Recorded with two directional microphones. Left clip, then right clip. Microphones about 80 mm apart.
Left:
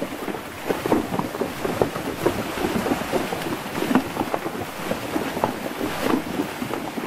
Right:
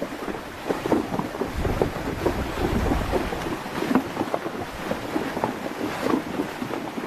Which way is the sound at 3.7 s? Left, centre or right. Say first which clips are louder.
Left 2 dB; left.